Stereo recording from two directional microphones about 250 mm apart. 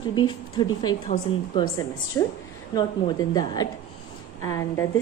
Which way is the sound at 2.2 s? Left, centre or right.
Centre.